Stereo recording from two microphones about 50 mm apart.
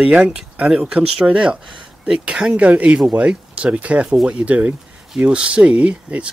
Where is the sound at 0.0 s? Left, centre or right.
Right.